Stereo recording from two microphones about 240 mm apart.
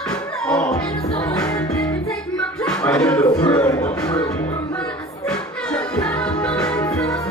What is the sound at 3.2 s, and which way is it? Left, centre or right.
Music, centre.